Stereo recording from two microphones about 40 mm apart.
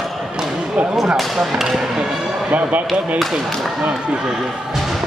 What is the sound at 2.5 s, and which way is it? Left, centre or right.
Speech, right.